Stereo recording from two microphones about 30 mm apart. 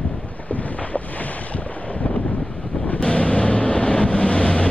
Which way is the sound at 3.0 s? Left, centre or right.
Left.